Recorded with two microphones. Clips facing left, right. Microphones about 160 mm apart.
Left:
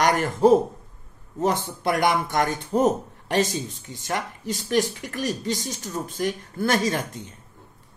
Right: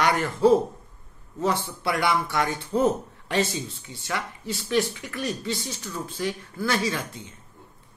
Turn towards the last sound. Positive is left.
turn(degrees=45)  # may be behind; listen again after turning